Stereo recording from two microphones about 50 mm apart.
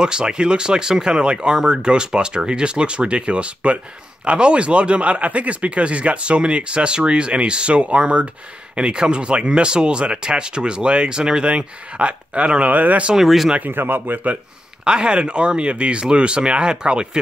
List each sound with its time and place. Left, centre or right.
0.0 s speech: centre
13.1 s speech: centre
13.6 s speech: right
14.9 s speech: centre